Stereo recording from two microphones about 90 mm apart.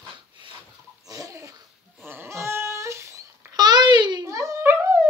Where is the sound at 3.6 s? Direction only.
50° right (ahead or behind).